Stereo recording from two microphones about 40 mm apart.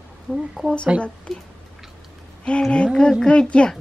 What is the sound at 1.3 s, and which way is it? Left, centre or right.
Speech, centre.